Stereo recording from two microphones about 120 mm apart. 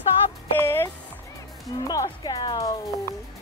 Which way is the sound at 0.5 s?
20° left (ahead or behind).